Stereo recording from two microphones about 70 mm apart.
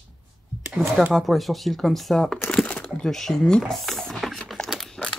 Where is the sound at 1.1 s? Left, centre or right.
Centre.